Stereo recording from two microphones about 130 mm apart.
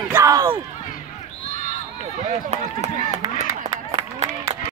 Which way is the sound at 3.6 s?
60° right (ahead or behind).